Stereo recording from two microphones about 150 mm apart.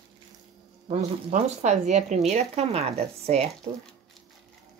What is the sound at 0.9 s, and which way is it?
Speech, 50° right (ahead or behind).